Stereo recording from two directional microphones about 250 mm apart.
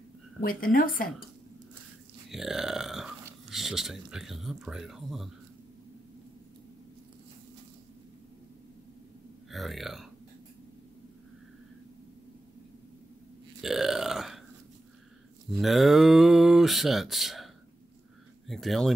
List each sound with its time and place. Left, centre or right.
0.4 s speech: left
2.3 s speech: centre
9.5 s speech: centre
13.6 s burping: centre
15.5 s speech: centre
18.5 s speech: centre